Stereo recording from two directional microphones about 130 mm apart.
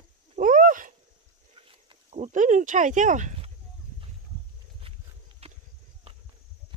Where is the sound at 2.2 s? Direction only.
70° right (ahead or behind).